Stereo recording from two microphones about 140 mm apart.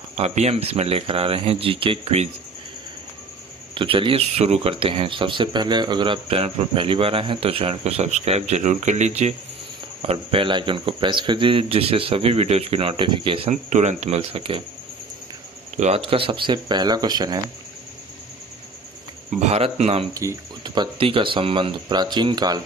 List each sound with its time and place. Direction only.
0.1 s speech: 50° right (ahead or behind)
3.7 s speech: 40° right (ahead or behind); by 9.3 s 55° right (ahead or behind)
10.0 s speech: 40° right (ahead or behind)
13.5 s speech: 55° right (ahead or behind)
15.8 s speech: 45° right (ahead or behind)
19.4 s speech: 50° right (ahead or behind)
20.6 s speech: 30° right (ahead or behind)